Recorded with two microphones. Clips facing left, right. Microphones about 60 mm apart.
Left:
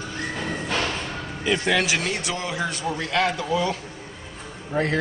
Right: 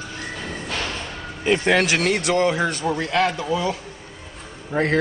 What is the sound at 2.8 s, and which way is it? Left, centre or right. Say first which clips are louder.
Speech: right 1 dB; right.